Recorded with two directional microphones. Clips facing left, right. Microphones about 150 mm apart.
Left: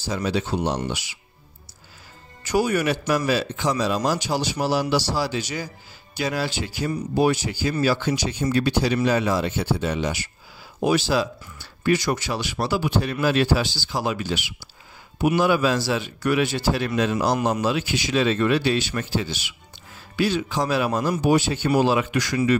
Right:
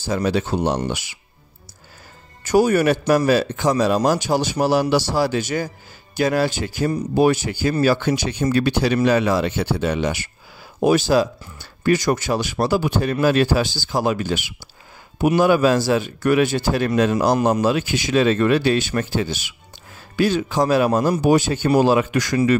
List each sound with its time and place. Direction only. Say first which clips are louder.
0.0 s a man's voice: right 4 dB; 50° right (ahead or behind)
2.4 s a man's voice: right 6 dB; 45° right (ahead or behind)
10.8 s a man's voice: right 5 dB; 45° right (ahead or behind)